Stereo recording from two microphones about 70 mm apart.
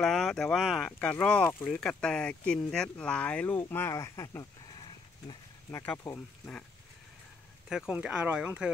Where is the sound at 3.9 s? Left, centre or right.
Left.